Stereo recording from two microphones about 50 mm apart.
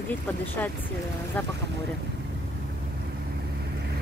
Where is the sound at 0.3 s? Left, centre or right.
Left.